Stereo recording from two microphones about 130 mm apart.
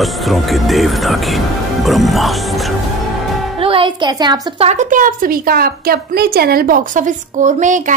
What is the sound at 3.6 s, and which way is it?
Music, 45° right (ahead or behind).